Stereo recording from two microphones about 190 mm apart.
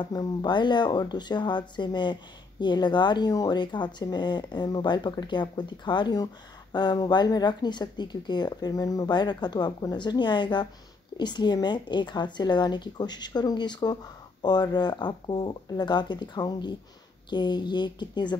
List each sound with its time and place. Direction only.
0.0 s speech: 20° left (ahead or behind)